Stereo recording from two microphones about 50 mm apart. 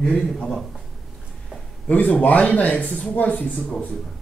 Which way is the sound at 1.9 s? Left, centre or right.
Left.